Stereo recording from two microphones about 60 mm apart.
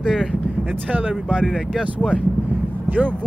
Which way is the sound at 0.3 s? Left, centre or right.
Right.